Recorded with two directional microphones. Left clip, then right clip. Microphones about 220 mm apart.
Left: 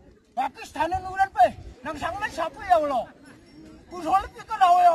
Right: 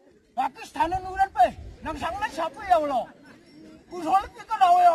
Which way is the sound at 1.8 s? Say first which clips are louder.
Right 1 dB; 15° left (ahead or behind).